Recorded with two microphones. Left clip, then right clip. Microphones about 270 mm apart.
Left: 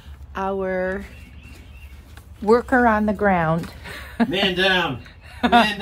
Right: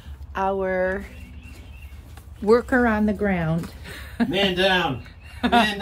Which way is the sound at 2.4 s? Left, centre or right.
Centre.